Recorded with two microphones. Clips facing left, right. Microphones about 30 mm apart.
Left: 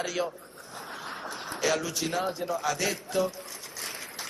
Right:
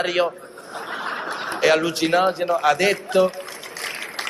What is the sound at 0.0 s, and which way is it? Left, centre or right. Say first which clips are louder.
A man's voice: right 10 dB; right.